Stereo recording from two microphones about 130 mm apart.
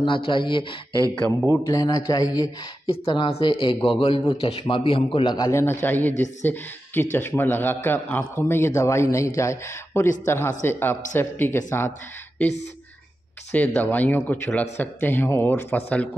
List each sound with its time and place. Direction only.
0.0 s speech: 40° left (ahead or behind)
1.2 s a man's voice: 15° left (ahead or behind)
1.7 s a man's voice: 30° left (ahead or behind)
2.9 s a man's voice: 45° left (ahead or behind)
5.5 s a man's voice: 20° left (ahead or behind)